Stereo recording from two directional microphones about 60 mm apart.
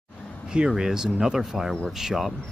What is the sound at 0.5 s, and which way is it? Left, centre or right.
Speech, centre.